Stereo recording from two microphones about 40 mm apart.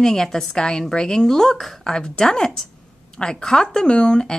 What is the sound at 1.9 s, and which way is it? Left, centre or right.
Speech, centre.